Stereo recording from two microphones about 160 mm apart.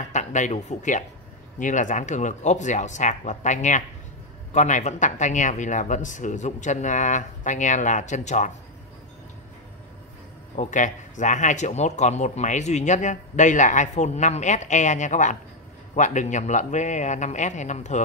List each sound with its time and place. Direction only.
0.1 s speech: 50° left (ahead or behind)
10.5 s speech: 50° left (ahead or behind)